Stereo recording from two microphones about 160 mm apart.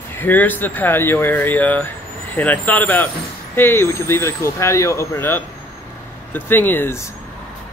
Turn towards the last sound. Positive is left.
turn(degrees=15)  # may be behind; listen again after turning